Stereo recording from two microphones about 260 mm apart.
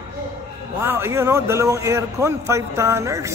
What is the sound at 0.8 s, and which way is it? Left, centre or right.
A man's voice, centre.